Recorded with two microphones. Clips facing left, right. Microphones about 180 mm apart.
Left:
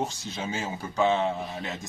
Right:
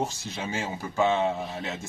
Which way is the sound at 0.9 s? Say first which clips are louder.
Even; 20° right (ahead or behind).